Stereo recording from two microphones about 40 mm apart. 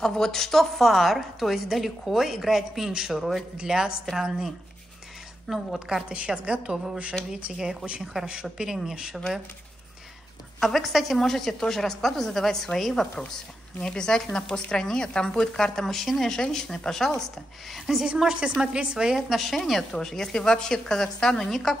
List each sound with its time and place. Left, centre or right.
0.0 s a woman's voice: centre
5.5 s a woman's voice: centre
8.0 s speech: centre
8.3 s a woman's voice: centre
10.6 s a woman's voice: centre
13.7 s a woman's voice: centre
18.0 s a woman's voice: centre
19.1 s a woman's voice: centre